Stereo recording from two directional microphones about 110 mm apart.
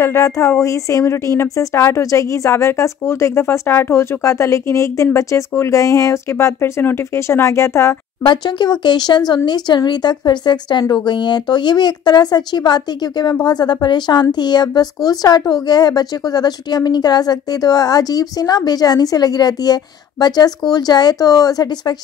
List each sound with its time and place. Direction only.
0.0 s a woman's voice: 25° left (ahead or behind)
8.3 s a woman's voice: 45° left (ahead or behind)